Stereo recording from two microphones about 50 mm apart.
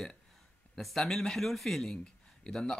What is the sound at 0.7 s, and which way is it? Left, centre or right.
Speech, centre.